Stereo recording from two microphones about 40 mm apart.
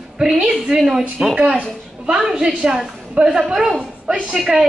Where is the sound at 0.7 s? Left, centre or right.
Centre.